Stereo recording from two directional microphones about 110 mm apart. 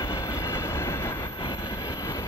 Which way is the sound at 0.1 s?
25° left (ahead or behind).